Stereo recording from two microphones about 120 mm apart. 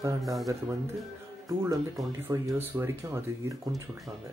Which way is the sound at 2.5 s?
15° right (ahead or behind).